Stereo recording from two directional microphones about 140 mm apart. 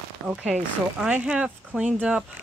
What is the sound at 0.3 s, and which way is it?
Speech, 5° right (ahead or behind).